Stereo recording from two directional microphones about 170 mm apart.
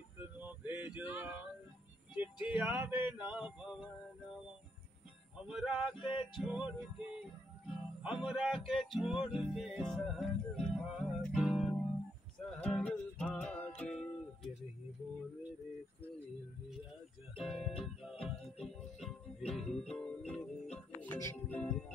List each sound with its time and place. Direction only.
0.4 s a sound: 10° right (ahead or behind)
0.9 s male singing: 10° right (ahead or behind)
2.4 s male singing: 10° right (ahead or behind)
5.5 s male singing: 5° right (ahead or behind)
5.9 s male singing: 30° left (ahead or behind)
6.3 s male singing: 5° right (ahead or behind)
6.8 s music: 5° right (ahead or behind)
17.4 s male singing: centre (ahead or behind)
18.2 s music: centre (ahead or behind)
21.0 s speech: 15° left (ahead or behind)